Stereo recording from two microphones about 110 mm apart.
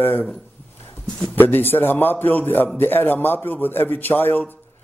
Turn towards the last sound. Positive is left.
turn(degrees=20)  # may be behind; listen again after turning